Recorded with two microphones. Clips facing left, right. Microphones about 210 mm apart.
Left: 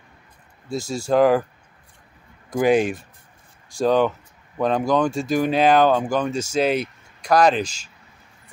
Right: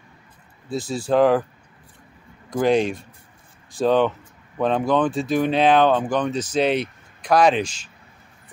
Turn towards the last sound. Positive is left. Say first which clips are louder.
# even
turn(degrees=-5)  # may be behind; listen again after turning